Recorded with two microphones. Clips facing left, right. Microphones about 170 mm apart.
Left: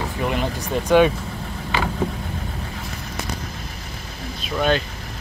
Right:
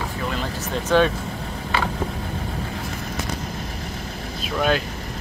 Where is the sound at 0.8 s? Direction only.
15° left (ahead or behind).